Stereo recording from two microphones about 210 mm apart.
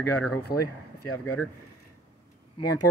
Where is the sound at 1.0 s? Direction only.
90° left.